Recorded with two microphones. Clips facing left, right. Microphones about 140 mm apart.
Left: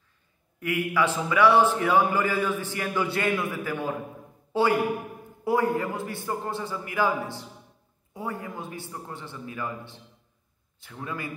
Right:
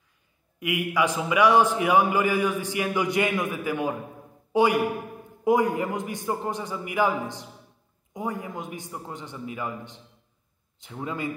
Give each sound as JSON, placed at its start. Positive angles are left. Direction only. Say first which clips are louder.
{"t": 0.6, "sound": "a man's voice", "louder": "even", "side_deg": -15}